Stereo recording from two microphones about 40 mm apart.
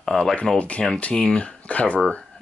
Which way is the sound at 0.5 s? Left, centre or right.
Left.